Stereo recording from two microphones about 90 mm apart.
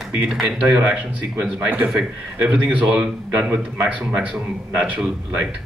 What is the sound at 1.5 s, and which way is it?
A man's voice, 20° right (ahead or behind).